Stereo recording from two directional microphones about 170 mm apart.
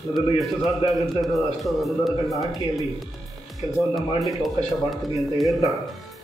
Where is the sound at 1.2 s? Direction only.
Centre (ahead or behind).